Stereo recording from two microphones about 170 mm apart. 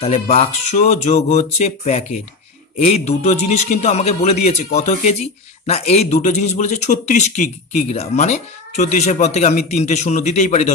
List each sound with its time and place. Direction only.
0.0 s a man's voice: 35° left (ahead or behind)